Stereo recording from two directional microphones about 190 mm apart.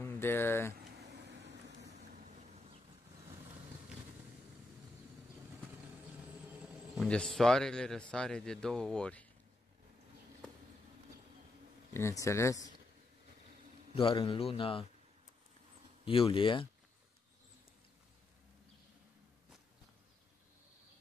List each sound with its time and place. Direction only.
0.0 s speech: 10° left (ahead or behind)
0.9 s vehicle: 65° right (ahead or behind)
6.6 s speech: 5° left (ahead or behind)
11.9 s speech: 15° left (ahead or behind)
13.9 s a man's voice: 25° left (ahead or behind)
16.1 s a man's voice: 30° left (ahead or behind)